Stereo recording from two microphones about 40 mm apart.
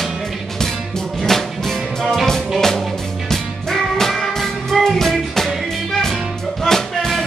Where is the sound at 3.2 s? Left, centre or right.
Centre.